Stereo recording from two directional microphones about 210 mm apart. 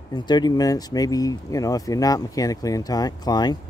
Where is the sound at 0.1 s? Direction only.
20° left (ahead or behind).